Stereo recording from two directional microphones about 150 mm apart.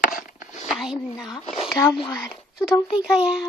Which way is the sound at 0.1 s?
65° left (ahead or behind).